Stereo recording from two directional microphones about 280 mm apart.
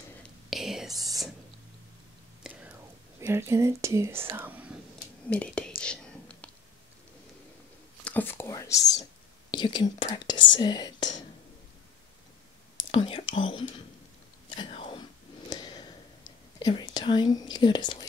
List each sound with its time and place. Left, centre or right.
0.2 s whispering: centre
0.9 s whispering: centre
2.4 s whispering: centre
3.2 s speech: centre
5.8 s whispering: centre
8.0 s speech: centre
12.9 s speech: centre
14.5 s whispering: centre
15.5 s a sound: centre
16.5 s speech: centre